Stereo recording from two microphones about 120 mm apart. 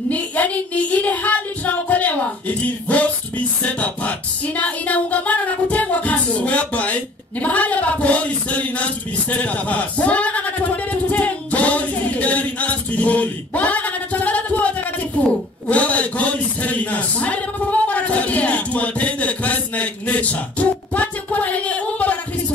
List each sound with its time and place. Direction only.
0.1 s child singing: 10° left (ahead or behind)
4.6 s music: 10° left (ahead or behind)
15.7 s a sound: 10° left (ahead or behind)